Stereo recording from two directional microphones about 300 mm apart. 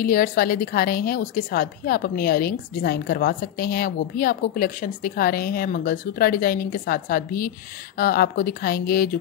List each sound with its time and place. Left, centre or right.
0.0 s a woman's voice: left